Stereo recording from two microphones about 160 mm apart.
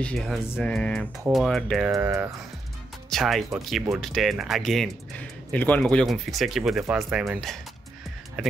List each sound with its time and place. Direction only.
0.0 s speech: 5° left (ahead or behind)
2.0 s speech: 15° right (ahead or behind)
3.1 s speech: centre (ahead or behind)